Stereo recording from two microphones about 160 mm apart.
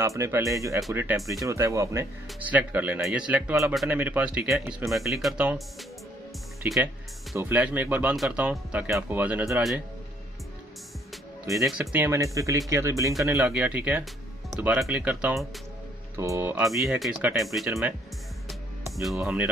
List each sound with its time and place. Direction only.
0.0 s speech: 15° right (ahead or behind)
11.8 s speech: 15° right (ahead or behind)
16.6 s speech: centre (ahead or behind)
19.2 s speech: 10° right (ahead or behind)